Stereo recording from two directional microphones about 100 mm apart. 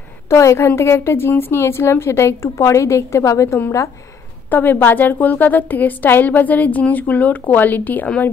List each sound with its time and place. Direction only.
0.3 s a woman's voice: 30° left (ahead or behind)
4.5 s a woman's voice: 20° left (ahead or behind)